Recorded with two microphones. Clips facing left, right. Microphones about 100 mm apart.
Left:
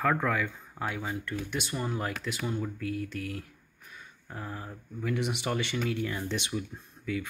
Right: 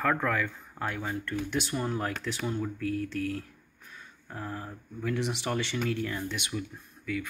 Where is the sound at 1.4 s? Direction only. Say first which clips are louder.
Right 3 dB; centre (ahead or behind).